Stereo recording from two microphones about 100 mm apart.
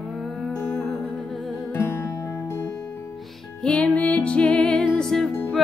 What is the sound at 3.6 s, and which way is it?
Music, 10° left (ahead or behind).